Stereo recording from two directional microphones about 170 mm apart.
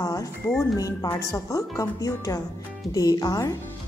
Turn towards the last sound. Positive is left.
turn(degrees=20)  # may be behind; listen again after turning